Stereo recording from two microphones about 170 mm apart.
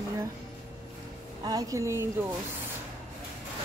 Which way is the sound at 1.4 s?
20° right (ahead or behind).